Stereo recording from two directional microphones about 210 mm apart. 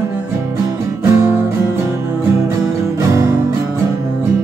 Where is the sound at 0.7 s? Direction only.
10° right (ahead or behind).